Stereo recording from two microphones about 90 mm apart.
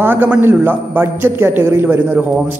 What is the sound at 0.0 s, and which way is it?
A man's voice, 20° right (ahead or behind).